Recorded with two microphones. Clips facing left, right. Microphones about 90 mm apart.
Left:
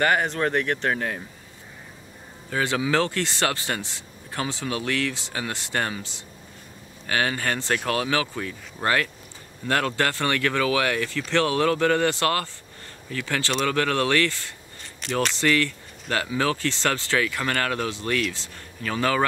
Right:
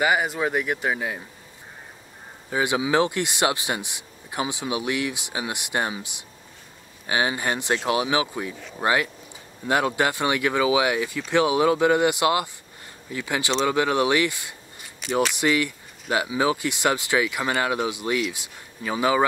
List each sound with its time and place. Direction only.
0.0 s speech: 10° right (ahead or behind)
2.5 s speech: 15° right (ahead or behind)